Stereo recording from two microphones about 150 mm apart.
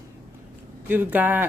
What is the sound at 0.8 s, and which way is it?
Speech, 10° right (ahead or behind).